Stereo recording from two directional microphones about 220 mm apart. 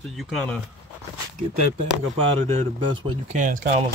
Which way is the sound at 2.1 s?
25° right (ahead or behind).